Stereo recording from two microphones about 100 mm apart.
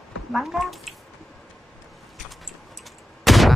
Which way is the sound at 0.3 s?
Centre (ahead or behind).